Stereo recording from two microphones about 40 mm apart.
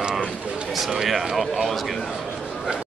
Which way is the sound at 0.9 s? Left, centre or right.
Centre.